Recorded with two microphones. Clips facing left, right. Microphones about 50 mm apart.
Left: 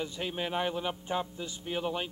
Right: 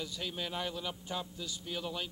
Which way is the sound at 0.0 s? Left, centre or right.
Left.